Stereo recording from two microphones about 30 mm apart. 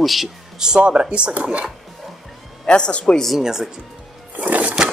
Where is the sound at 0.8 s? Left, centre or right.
Right.